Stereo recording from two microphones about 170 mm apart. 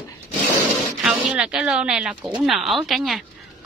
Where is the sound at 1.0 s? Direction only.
5° right (ahead or behind).